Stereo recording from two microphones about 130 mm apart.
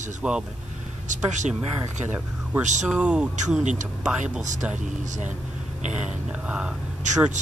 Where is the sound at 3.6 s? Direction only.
65° right (ahead or behind).